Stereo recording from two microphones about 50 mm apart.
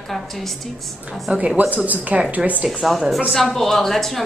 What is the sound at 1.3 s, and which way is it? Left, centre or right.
A woman's voice, right.